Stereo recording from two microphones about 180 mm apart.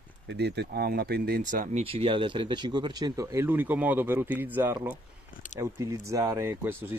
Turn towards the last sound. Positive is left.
turn(degrees=-15)  # may be behind; listen again after turning